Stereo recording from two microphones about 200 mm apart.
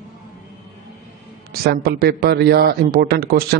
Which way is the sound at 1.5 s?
45° right (ahead or behind).